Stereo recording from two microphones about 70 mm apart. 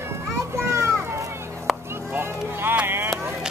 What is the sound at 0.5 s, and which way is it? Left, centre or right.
Children playing, right.